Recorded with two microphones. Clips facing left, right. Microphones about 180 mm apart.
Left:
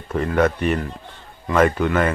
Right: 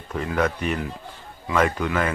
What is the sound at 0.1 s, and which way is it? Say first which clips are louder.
Speech: left 5 dB; centre (ahead or behind).